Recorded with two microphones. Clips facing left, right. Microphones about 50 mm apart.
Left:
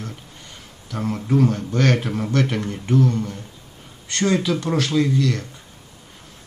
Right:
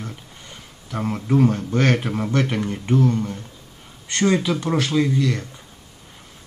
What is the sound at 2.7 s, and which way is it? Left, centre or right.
Speech, right.